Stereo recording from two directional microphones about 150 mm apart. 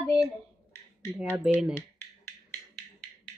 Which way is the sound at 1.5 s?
5° right (ahead or behind).